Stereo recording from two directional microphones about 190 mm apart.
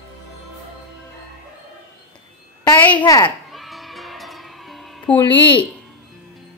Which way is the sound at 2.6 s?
10° left (ahead or behind).